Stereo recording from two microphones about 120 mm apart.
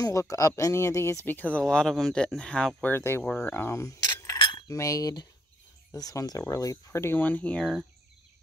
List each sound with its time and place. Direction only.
0.0 s speech: 25° left (ahead or behind)
3.4 s cutlery: 20° left (ahead or behind)
4.4 s cutlery: 40° left (ahead or behind)
4.6 s speech: 25° left (ahead or behind); by 7.7 s 10° left (ahead or behind)